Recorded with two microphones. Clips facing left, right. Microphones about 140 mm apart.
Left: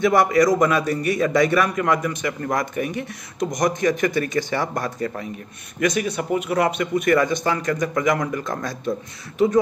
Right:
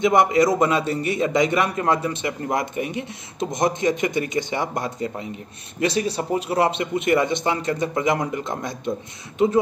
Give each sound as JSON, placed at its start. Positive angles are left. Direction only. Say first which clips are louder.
{"t": 0.0, "sound": "a man's voice", "louder": "even", "side_deg": -20}